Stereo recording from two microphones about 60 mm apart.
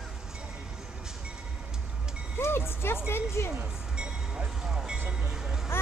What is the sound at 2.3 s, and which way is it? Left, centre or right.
Music, left.